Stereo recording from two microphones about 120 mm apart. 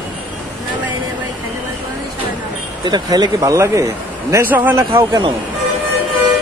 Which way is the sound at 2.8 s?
35° right (ahead or behind).